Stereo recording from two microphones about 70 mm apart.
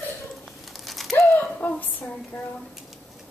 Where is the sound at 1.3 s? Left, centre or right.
Left.